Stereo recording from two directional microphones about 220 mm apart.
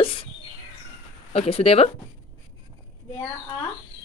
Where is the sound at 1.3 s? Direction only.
25° left (ahead or behind).